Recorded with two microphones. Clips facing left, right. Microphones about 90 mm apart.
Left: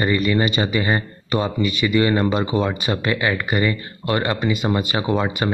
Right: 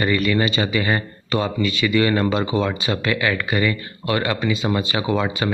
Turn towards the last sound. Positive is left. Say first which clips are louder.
# even
turn(degrees=20)  # may be behind; listen again after turning